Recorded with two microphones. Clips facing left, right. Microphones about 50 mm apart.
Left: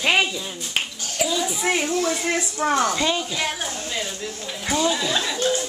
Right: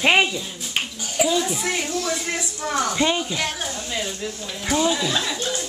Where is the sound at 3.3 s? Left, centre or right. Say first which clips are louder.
Even; centre.